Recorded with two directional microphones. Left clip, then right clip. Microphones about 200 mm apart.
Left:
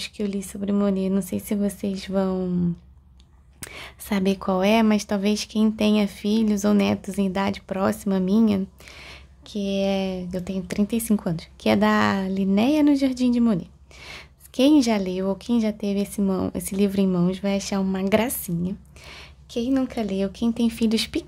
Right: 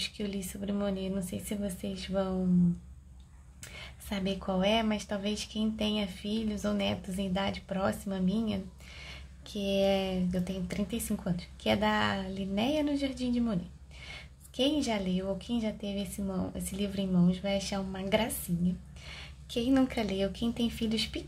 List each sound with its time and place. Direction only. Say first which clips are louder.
0.0 s speech: left 7 dB; 30° left (ahead or behind)
3.6 s speech: left 10 dB; 40° left (ahead or behind)